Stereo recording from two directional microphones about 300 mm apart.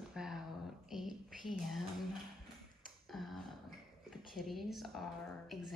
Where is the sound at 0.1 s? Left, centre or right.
Centre.